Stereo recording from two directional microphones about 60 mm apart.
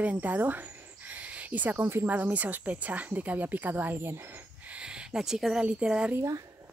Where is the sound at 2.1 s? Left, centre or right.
Right.